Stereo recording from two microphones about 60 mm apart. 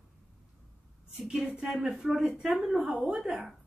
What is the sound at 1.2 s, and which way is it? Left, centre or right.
A woman's voice, centre.